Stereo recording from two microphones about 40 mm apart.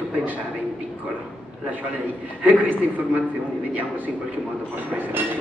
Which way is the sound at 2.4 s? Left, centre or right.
Right.